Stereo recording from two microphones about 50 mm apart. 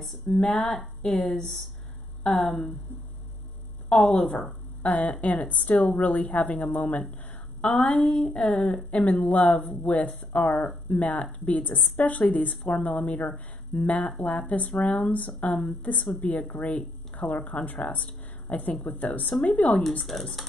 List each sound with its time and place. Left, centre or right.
0.3 s speech: centre
4.5 s a sound: left
5.2 s a woman's voice: left
15.1 s a woman's voice: left
20.0 s speech: centre